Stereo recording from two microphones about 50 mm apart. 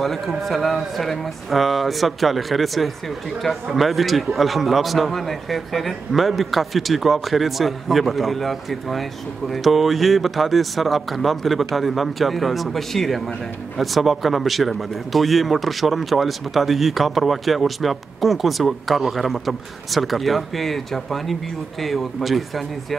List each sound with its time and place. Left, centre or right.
0.0 s a man's voice: centre